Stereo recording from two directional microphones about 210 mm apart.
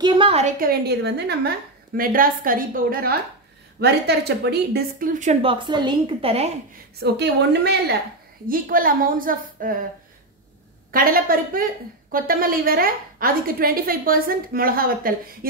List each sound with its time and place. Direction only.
0.0 s speech: 25° right (ahead or behind); by 1.5 s 55° right (ahead or behind)
2.0 s speech: 40° right (ahead or behind)
7.0 s speech: 50° right (ahead or behind)
10.9 s speech: 45° right (ahead or behind)